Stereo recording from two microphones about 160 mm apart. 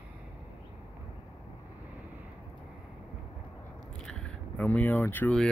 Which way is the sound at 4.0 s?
5° left (ahead or behind).